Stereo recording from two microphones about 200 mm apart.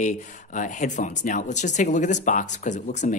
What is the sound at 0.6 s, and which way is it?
Speech, 40° left (ahead or behind).